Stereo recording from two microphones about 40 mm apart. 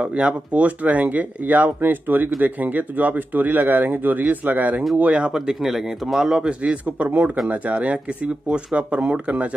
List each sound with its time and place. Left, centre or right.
0.0 s speech: right
1.8 s speech: right
4.9 s speech: right
5.3 s speech: centre
6.6 s speech: right